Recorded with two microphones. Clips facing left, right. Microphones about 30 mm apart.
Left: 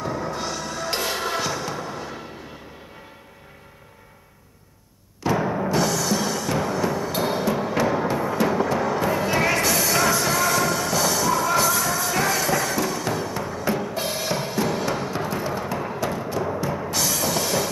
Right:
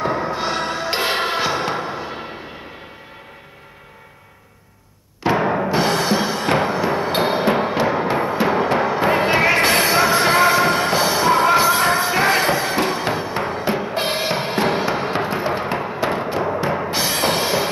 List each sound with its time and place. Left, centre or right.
0.0 s music: right
5.2 s music: right
9.7 s basketball bounce: right
9.9 s music: right